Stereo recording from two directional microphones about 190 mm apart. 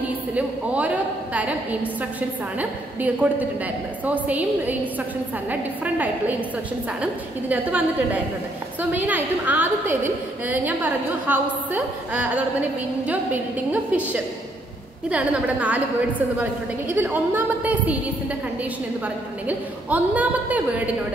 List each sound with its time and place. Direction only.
0.3 s a woman's voice: 10° right (ahead or behind)
19.4 s a woman's voice: 10° right (ahead or behind)